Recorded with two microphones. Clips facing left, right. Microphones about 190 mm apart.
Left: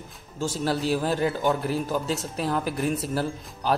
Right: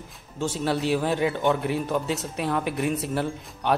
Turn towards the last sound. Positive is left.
turn(degrees=0)  # may be behind; listen again after turning